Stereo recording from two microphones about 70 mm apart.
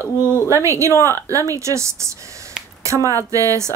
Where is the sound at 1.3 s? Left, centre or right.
Right.